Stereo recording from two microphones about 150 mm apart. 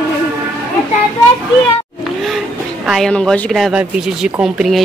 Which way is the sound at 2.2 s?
Centre (ahead or behind).